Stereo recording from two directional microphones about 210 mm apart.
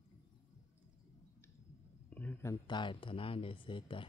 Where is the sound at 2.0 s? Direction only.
5° left (ahead or behind).